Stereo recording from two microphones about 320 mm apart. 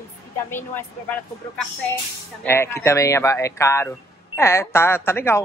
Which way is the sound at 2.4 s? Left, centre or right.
Centre.